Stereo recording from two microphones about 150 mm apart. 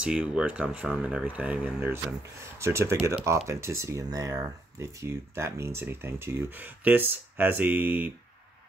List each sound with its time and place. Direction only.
0.0 s speech: 5° right (ahead or behind)